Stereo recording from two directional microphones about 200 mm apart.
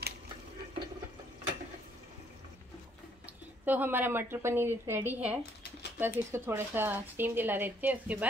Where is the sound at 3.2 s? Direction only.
10° right (ahead or behind).